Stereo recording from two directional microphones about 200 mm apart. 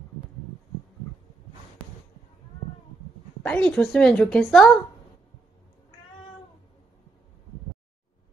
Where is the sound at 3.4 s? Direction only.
5° left (ahead or behind).